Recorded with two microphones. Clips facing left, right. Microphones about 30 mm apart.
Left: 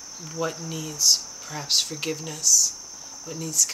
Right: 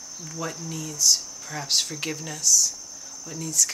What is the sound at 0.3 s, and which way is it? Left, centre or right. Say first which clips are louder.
Speech: left 3 dB; centre.